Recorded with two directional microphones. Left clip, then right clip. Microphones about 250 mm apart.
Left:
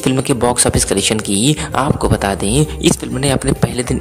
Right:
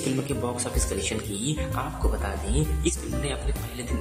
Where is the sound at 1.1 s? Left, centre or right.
Left.